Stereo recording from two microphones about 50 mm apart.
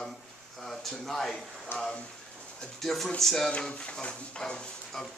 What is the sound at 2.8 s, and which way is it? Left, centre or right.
Speech, centre.